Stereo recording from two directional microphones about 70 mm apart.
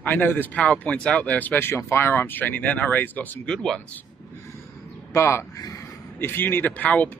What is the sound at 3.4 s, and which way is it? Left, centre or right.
Speech, centre.